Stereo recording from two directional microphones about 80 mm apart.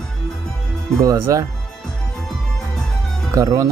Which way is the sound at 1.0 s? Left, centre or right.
Right.